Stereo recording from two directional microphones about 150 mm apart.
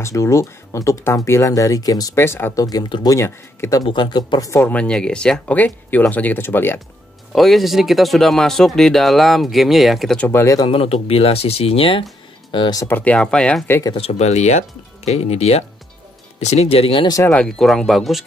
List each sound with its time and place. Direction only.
0.0 s speech: 20° left (ahead or behind)
3.8 s speech: 30° left (ahead or behind)
4.5 s speech: 20° left (ahead or behind)
4.7 s speech: 5° left (ahead or behind)
7.3 s speech: centre (ahead or behind)
10.2 s speech: 20° left (ahead or behind)
10.7 s speech: 40° left (ahead or behind)
12.8 s speech: 10° left (ahead or behind)
13.9 s speech: 45° left (ahead or behind)
17.3 s speech: 5° left (ahead or behind)